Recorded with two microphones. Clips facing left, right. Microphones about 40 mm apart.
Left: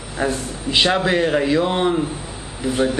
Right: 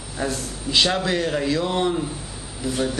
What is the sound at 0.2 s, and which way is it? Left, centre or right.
Speech, left.